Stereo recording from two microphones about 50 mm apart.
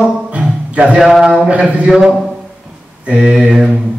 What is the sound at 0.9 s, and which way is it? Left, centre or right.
Speech, centre.